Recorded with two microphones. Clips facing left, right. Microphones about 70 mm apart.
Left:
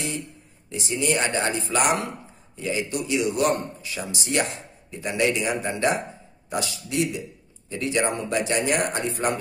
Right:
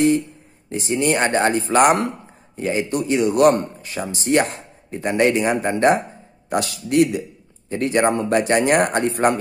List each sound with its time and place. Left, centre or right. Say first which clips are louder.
0.7 s a man's voice: right 6 dB; right
6.5 s a man's voice: right 8 dB; right